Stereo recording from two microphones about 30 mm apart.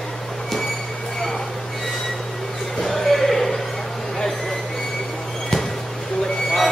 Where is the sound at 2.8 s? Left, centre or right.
Centre.